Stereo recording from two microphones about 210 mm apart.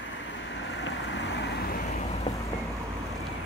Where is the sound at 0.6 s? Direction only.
60° left (ahead or behind).